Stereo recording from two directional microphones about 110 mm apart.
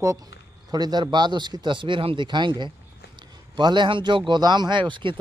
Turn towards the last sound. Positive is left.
turn(degrees=-50)  # may be behind; listen again after turning